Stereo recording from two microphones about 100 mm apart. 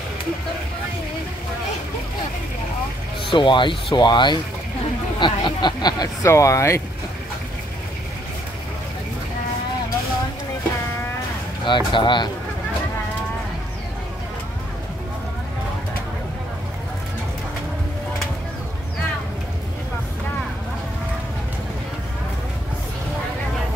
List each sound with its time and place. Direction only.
3.3 s speech: 55° left (ahead or behind)
6.2 s speech: 30° left (ahead or behind)
11.6 s speech: 50° left (ahead or behind)